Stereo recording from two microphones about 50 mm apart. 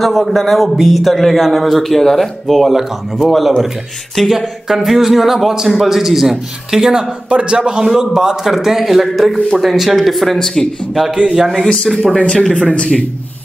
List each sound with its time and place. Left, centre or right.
0.0 s a man's voice: centre
7.8 s a man's voice: centre
11.2 s a man's voice: centre
11.9 s speech: centre
12.2 s speech: centre